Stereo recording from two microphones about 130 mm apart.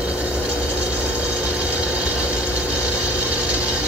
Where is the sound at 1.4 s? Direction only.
10° right (ahead or behind).